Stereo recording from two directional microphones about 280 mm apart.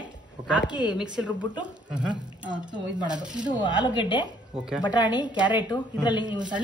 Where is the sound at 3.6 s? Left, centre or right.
Centre.